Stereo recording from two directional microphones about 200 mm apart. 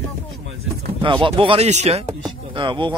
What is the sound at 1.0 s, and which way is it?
Speech, 25° right (ahead or behind).